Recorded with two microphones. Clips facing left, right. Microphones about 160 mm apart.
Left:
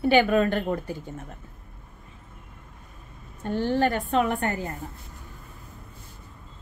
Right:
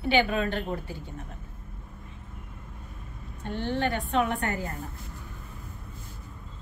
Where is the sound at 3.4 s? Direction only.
40° left (ahead or behind).